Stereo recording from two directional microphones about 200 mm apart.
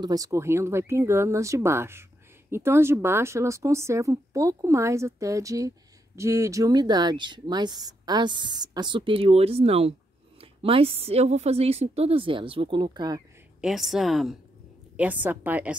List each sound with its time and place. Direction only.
0.0 s speech: 15° right (ahead or behind)
13.6 s a woman's voice: centre (ahead or behind)